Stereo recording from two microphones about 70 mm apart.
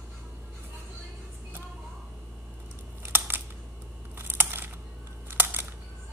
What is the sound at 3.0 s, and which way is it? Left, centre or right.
Crumpling, right.